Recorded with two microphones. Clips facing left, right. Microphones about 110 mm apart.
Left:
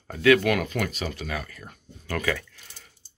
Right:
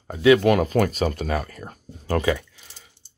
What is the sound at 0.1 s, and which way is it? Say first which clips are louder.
Speech: right 4 dB; 20° right (ahead or behind).